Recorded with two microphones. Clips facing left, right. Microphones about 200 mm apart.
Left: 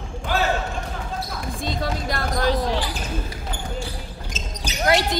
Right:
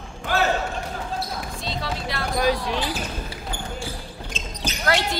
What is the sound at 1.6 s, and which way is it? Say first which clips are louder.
Music: left 5 dB; 45° left (ahead or behind).